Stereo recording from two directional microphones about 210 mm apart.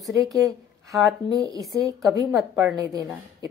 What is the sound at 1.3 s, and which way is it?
Speech, 15° right (ahead or behind).